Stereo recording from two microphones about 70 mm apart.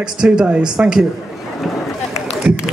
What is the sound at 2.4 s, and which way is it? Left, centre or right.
Speech, centre.